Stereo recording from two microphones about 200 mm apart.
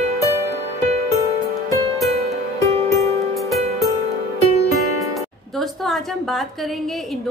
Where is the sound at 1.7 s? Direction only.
15° left (ahead or behind).